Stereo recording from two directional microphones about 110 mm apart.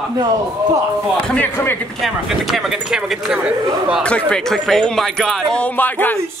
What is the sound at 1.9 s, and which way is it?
Speech, centre (ahead or behind).